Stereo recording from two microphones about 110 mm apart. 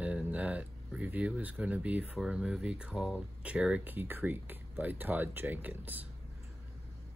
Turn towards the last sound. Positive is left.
turn(degrees=-15)  # may be behind; listen again after turning